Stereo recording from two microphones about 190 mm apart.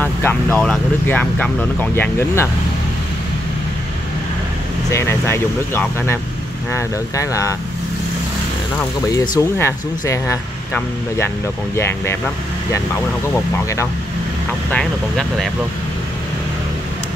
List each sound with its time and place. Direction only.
0.0 s speech: 10° left (ahead or behind)
4.9 s speech: 15° left (ahead or behind)
9.1 s speech: 20° left (ahead or behind)
14.7 s speech: 5° left (ahead or behind)